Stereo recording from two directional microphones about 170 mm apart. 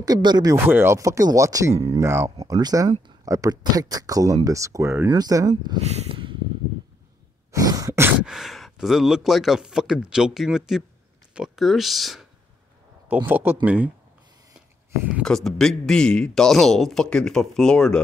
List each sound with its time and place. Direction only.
0.0 s speech: 25° right (ahead or behind)
0.7 s a man's voice: 15° right (ahead or behind)
5.9 s snort: 35° right (ahead or behind)
7.5 s sneeze: 20° right (ahead or behind)
8.3 s speech: centre (ahead or behind)
13.1 s a man's voice: 10° right (ahead or behind)
15.2 s speech: centre (ahead or behind)